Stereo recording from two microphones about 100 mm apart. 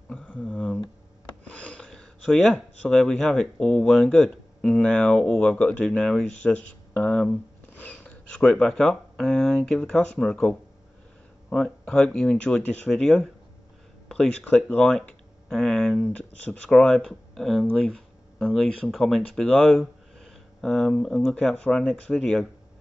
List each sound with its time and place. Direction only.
0.1 s speech: 15° left (ahead or behind)
1.8 s speech: 5° left (ahead or behind)
11.5 s speech: 5° left (ahead or behind)